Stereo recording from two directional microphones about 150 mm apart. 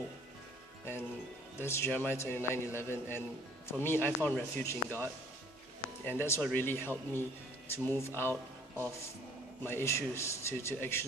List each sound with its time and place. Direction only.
1.6 s a man's voice: 15° left (ahead or behind)